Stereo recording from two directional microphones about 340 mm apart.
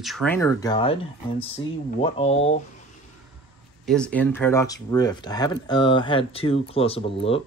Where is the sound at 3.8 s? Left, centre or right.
Centre.